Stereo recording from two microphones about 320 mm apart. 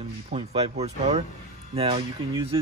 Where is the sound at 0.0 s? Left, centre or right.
Centre.